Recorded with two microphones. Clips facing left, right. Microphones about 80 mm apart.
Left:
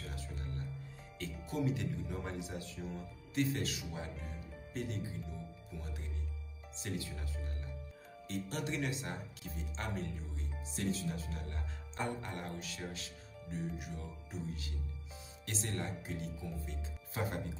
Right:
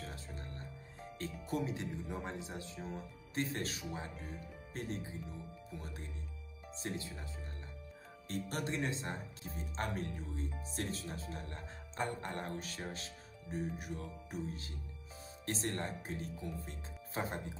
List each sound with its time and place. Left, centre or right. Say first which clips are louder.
0.0 s music: left 1 dB; right
1.5 s speech: left 2 dB; right
6.8 s speech: even; right
8.3 s speech: even; right
17.2 s speech: left 1 dB; right